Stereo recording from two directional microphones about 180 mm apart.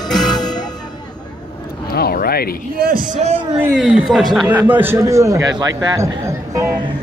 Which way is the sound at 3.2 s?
35° right (ahead or behind).